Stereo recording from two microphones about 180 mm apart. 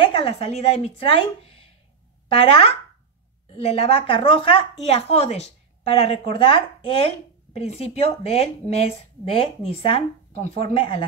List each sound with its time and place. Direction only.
0.0 s a woman's voice: 30° left (ahead or behind)